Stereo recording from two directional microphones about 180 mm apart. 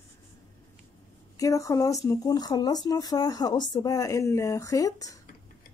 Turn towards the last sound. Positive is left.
turn(degrees=20)  # may be behind; listen again after turning